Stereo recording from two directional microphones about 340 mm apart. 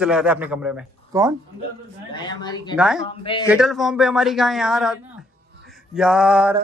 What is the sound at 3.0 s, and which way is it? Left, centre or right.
Speech, centre.